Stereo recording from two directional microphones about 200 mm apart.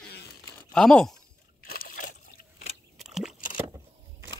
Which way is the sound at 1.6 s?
45° left (ahead or behind).